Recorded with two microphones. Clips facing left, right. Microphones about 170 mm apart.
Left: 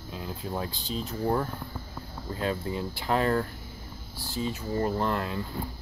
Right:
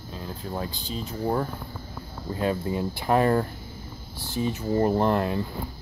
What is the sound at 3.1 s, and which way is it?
Speech, 15° right (ahead or behind).